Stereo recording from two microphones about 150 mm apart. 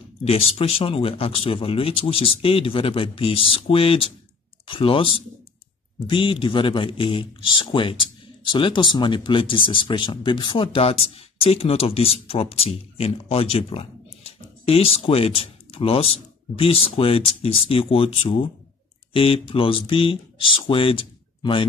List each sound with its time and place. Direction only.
0.2 s speech: 45° left (ahead or behind)